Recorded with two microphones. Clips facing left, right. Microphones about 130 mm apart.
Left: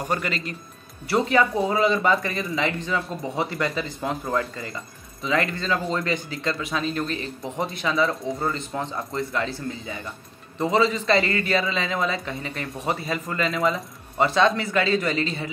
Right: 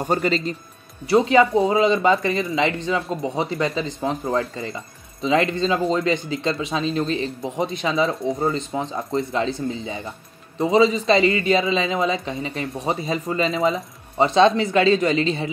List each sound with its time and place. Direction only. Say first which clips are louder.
0.1 s speech: right 8 dB; 30° right (ahead or behind)
1.0 s speech: right 5 dB; 20° right (ahead or behind)